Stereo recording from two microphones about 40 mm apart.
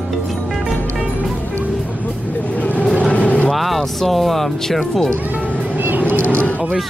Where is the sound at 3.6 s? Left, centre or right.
Centre.